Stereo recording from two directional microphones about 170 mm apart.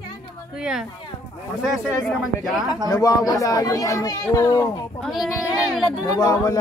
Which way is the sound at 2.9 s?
20° left (ahead or behind).